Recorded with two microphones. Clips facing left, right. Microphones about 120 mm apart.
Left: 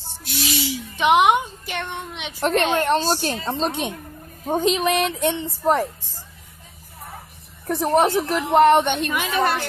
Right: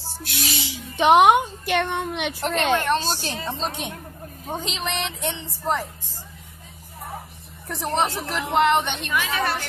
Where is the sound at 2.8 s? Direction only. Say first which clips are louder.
Left 4 dB; 40° left (ahead or behind).